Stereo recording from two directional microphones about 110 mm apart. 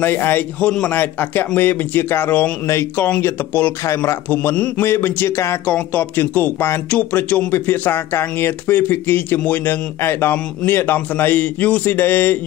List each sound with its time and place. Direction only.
0.0 s a man's voice: 20° left (ahead or behind)